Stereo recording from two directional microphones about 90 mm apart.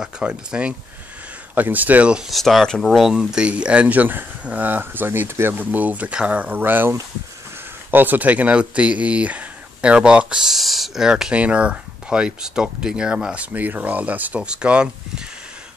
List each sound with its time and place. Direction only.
0.0 s speech: 10° right (ahead or behind)
2.3 s speech: centre (ahead or behind); by 6.9 s 20° right (ahead or behind)
7.9 s speech: 20° right (ahead or behind)